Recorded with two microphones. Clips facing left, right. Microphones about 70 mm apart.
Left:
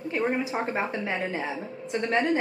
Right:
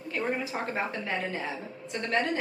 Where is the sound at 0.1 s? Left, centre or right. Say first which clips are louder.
Left 4 dB; centre.